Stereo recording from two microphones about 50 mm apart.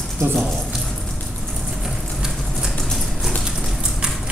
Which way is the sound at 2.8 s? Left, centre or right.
Centre.